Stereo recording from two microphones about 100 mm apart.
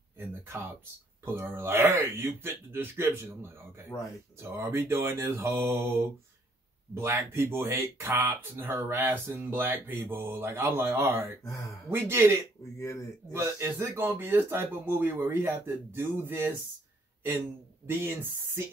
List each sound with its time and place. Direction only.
1.2 s speech: 25° right (ahead or behind)
3.9 s speech: 30° left (ahead or behind)
4.4 s speech: 25° right (ahead or behind)
12.7 s speech: 30° left (ahead or behind)
13.3 s speech: 25° right (ahead or behind)
17.8 s speech: 20° right (ahead or behind)